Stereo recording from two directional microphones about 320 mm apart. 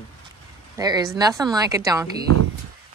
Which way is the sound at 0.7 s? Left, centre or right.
Centre.